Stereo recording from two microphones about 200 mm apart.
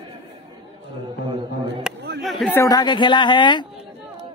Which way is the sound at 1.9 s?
5° right (ahead or behind).